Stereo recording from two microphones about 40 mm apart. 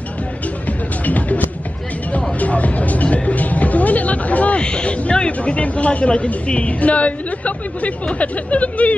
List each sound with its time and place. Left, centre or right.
1.0 s music: left
2.4 s a sound: left
4.6 s speech: left